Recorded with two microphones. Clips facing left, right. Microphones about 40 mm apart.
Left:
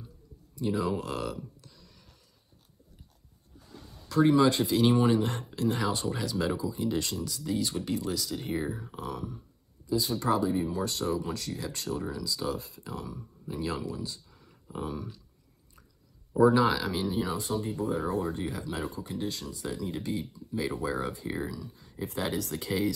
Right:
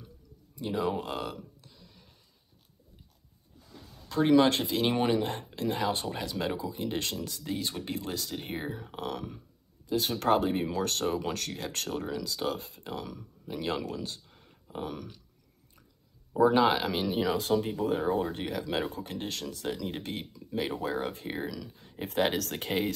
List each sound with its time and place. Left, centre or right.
0.6 s speech: right
1.3 s a sound: right
4.4 s speech: right
9.1 s speech: right
9.8 s speech: right
16.5 s speech: right
17.0 s speech: right